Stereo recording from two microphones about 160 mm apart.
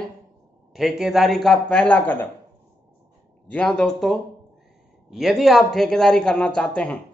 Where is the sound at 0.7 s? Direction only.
Centre (ahead or behind).